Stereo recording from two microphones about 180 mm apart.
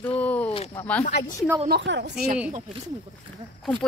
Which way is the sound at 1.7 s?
75° right (ahead or behind).